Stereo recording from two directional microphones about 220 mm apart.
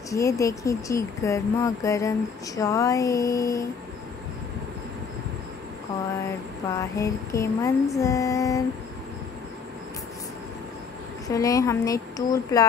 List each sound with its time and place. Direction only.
0.1 s speech: 15° left (ahead or behind)
6.7 s speech: 15° left (ahead or behind)
11.2 s speech: 15° left (ahead or behind)